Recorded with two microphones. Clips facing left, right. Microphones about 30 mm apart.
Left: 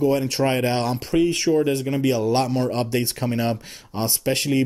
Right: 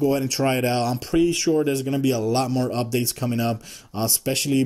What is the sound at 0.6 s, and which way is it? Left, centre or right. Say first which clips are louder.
Speech: even; left.